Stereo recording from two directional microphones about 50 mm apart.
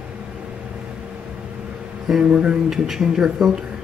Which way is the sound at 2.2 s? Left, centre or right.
Centre.